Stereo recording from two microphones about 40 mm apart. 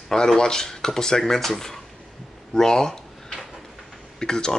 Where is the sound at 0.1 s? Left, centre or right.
Centre.